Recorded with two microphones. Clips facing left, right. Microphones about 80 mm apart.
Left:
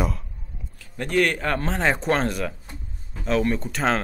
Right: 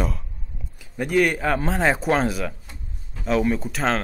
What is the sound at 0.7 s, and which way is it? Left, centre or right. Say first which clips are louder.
Speech: right 2 dB; centre.